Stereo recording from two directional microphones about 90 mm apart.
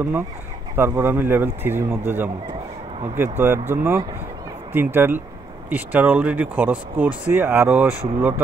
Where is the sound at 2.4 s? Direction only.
85° right.